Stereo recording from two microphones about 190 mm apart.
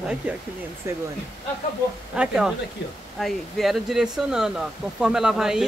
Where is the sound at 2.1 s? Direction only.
5° right (ahead or behind).